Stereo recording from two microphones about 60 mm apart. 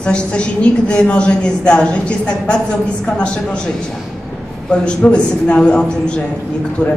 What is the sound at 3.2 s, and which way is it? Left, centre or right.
Speech, centre.